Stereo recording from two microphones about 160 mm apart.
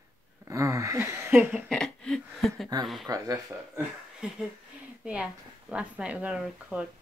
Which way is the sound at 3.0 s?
20° right (ahead or behind).